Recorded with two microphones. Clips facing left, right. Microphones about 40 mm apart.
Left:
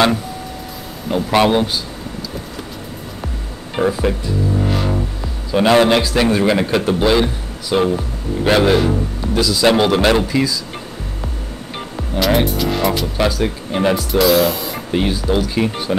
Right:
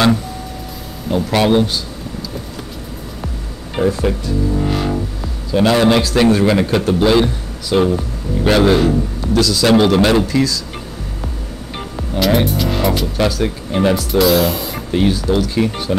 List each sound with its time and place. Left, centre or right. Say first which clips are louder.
1.0 s speech: left 1 dB; centre
3.8 s music: right 1 dB; centre
5.7 s a man's voice: left 2 dB; left
5.9 s a man's voice: right 2 dB; centre
11.7 s speech: right 1 dB; centre